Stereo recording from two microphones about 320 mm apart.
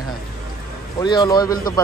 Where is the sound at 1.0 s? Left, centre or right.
Centre.